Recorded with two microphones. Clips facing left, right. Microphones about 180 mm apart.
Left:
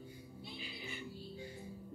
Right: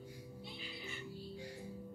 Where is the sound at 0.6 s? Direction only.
15° left (ahead or behind).